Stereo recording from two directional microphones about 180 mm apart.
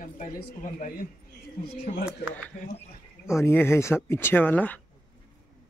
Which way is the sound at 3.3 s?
15° left (ahead or behind).